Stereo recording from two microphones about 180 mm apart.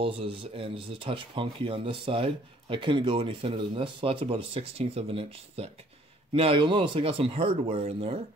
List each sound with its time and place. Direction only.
0.0 s speech: 30° right (ahead or behind)